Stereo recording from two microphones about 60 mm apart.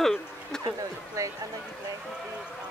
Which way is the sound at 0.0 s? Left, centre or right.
Centre.